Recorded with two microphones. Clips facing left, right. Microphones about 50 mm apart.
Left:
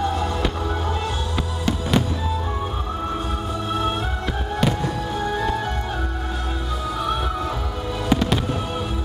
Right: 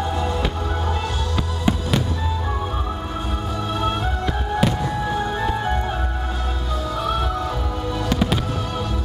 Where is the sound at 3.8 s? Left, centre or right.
Centre.